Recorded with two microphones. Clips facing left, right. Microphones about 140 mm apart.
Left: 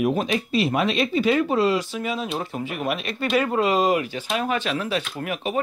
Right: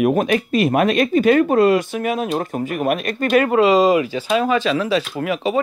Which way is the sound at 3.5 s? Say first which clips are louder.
Right 7 dB; 90° right.